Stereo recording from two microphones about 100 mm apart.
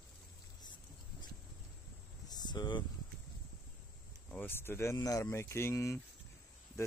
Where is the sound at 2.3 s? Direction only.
45° left (ahead or behind).